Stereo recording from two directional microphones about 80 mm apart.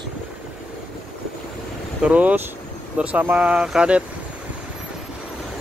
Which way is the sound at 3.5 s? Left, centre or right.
Centre.